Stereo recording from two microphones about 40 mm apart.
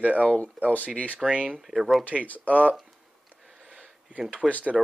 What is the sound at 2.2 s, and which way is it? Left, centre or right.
Speech, left.